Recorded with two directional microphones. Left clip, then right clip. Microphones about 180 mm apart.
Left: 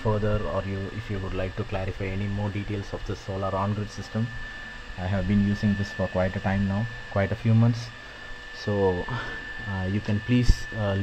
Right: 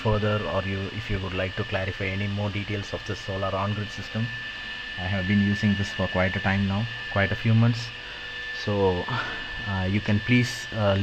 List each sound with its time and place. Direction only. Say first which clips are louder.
0.0 s speech: right 2 dB; 5° right (ahead or behind)
1.3 s speech: right 3 dB; 5° left (ahead or behind)
5.0 s speech: right 1 dB; 15° left (ahead or behind)
5.6 s speech: right 2 dB; centre (ahead or behind)
8.6 s speech: even; 10° right (ahead or behind)